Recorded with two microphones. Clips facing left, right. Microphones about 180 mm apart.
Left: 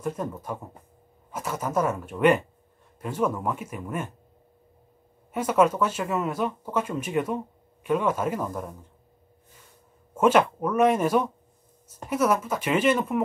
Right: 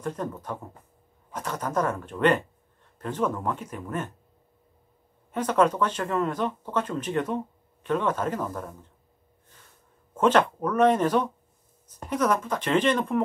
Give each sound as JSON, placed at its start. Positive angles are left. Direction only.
{"t": 0.0, "sound": "speech", "side_deg": 10}
{"t": 5.3, "sound": "speech", "side_deg": 10}
{"t": 10.1, "sound": "speech", "side_deg": 10}